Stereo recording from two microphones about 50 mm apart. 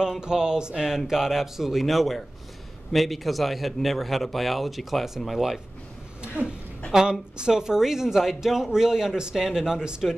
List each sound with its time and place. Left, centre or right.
0.0 s a man's voice: centre
6.2 s a sound: right
6.9 s speech: centre